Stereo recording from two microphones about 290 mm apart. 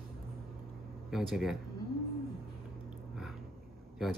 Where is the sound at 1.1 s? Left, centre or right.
Centre.